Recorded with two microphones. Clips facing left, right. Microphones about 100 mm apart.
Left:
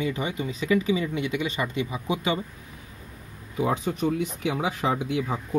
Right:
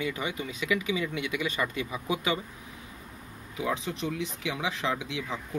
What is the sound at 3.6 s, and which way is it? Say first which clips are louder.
Speech: left 6 dB; 50° left (ahead or behind).